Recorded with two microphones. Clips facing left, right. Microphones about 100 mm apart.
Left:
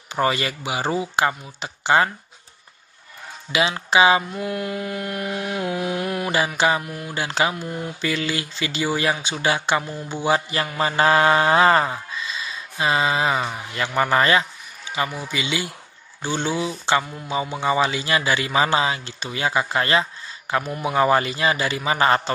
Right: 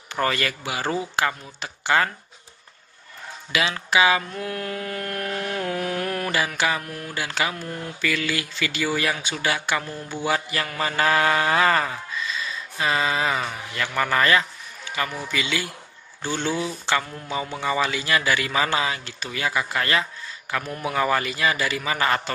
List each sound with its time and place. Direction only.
0.1 s mantra: 20° left (ahead or behind)
3.5 s mantra: 20° left (ahead or behind)
4.4 s a sound: 10° left (ahead or behind)
6.3 s mantra: 20° left (ahead or behind)